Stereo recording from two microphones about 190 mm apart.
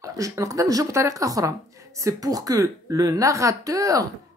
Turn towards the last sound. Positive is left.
turn(degrees=-20)  # may be behind; listen again after turning